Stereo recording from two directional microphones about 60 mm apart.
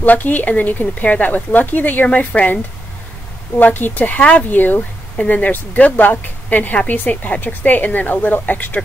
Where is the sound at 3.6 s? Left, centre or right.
Left.